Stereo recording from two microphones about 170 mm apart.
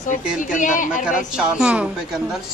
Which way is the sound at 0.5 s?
50° left (ahead or behind).